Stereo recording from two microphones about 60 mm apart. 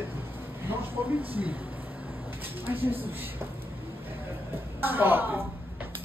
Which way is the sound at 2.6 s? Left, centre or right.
Right.